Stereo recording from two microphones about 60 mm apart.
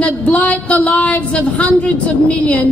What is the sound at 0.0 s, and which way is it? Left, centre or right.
A woman's voice, left.